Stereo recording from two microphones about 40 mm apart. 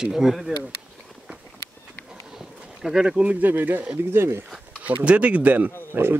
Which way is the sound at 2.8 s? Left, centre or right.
Centre.